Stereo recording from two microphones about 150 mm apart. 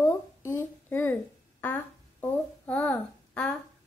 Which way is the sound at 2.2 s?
10° left (ahead or behind).